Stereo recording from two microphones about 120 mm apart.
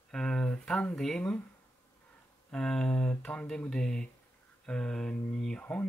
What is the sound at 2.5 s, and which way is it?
Speech, 5° left (ahead or behind).